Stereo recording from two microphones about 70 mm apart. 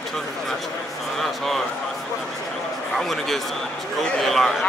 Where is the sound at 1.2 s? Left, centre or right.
Centre.